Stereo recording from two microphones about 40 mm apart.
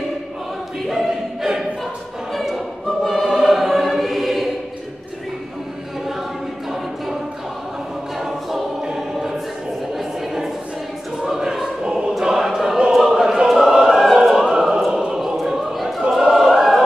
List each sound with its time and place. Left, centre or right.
0.8 s choir: centre
8.2 s choir: centre
9.9 s a sound: centre
11.1 s choir: centre
11.8 s choir: right
12.1 s choir: centre
13.5 s opera: centre
15.3 s choir: centre